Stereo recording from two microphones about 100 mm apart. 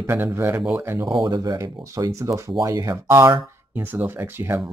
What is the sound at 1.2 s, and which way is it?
Speech, 40° right (ahead or behind).